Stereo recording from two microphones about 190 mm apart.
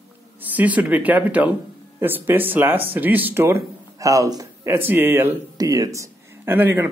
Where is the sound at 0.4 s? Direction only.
10° right (ahead or behind).